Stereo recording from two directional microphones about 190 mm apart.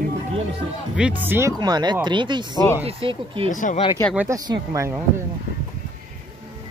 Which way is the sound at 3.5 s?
40° left (ahead or behind).